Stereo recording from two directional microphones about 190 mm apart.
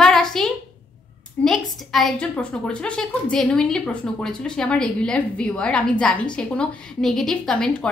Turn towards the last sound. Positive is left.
turn(degrees=5)  # may be behind; listen again after turning